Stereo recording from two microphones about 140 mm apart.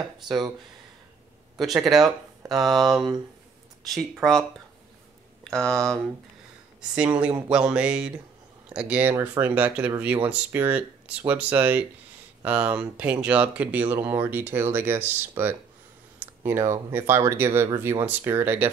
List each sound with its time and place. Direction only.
0.0 s speech: 30° right (ahead or behind)
1.6 s speech: centre (ahead or behind)
5.4 s speech: 5° left (ahead or behind)
6.8 s speech: 10° right (ahead or behind)